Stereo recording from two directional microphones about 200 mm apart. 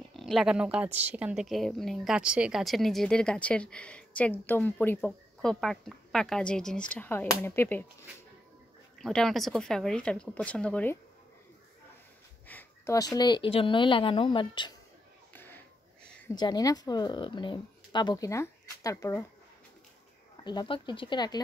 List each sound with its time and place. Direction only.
0.1 s a woman's voice: centre (ahead or behind)
8.9 s a woman's voice: centre (ahead or behind)
12.4 s speech: 10° left (ahead or behind)
15.3 s a sound: 10° left (ahead or behind)
16.3 s speech: 20° left (ahead or behind)
20.4 s speech: 25° left (ahead or behind)